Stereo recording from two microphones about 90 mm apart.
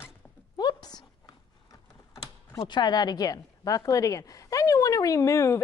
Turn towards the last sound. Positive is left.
turn(degrees=35)  # may be behind; listen again after turning